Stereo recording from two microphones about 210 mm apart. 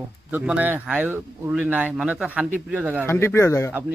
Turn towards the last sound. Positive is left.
turn(degrees=15)  # may be behind; listen again after turning